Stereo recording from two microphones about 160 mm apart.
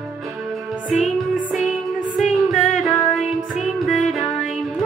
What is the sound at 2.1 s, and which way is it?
Music, centre (ahead or behind).